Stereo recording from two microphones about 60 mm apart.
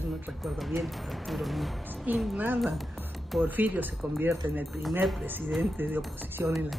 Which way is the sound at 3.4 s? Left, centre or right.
Right.